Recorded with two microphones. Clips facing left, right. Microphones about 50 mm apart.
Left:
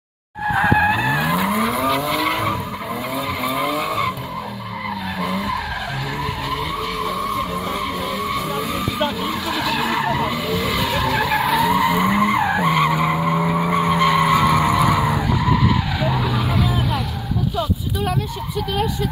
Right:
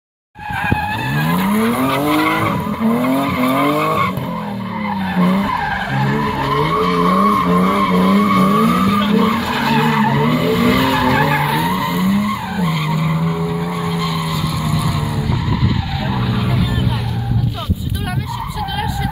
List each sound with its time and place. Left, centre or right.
1.2 s vehicle: centre
1.9 s vehicle: right
6.5 s vehicle: right
9.3 s vehicle: right
9.8 s vehicle: centre
10.7 s vehicle: right
11.0 s vehicle: centre
11.8 s vehicle: left
14.7 s vehicle: left
16.1 s vehicle: centre